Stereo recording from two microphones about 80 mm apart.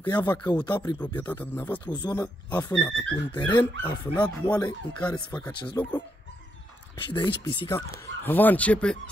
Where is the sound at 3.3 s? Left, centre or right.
Left.